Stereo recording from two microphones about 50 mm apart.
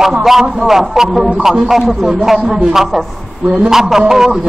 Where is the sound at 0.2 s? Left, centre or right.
Centre.